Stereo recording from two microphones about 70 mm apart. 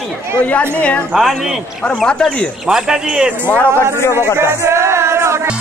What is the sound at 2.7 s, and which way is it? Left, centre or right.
Speech, centre.